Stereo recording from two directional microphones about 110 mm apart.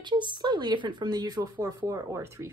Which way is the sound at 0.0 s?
45° right (ahead or behind).